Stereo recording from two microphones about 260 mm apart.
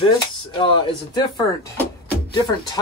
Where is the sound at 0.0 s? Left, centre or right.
Centre.